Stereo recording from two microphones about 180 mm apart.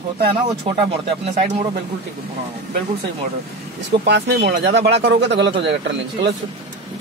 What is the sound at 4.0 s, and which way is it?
Speech, 70° right (ahead or behind).